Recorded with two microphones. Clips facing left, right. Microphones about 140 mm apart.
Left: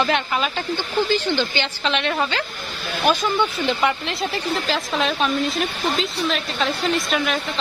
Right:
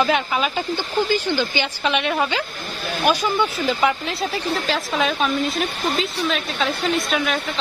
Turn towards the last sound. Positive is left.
turn(degrees=0)  # may be behind; listen again after turning